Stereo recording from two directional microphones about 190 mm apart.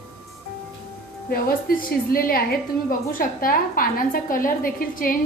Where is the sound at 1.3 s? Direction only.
50° left (ahead or behind).